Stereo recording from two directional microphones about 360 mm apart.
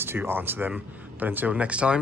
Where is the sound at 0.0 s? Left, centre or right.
Centre.